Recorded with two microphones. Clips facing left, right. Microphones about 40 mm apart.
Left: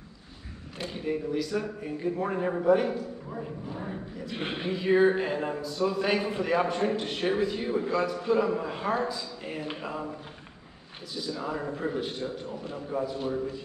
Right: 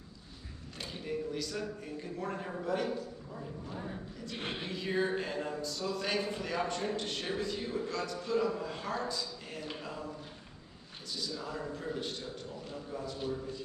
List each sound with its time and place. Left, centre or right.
0.7 s a man's voice: centre
4.2 s a man's voice: centre
11.2 s a man's voice: left